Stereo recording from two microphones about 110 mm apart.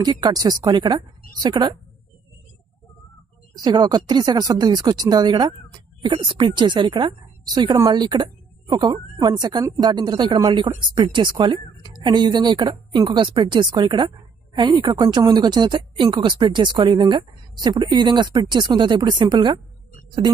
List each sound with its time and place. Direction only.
0.0 s speech: 40° right (ahead or behind)
3.6 s a woman's voice: 40° right (ahead or behind)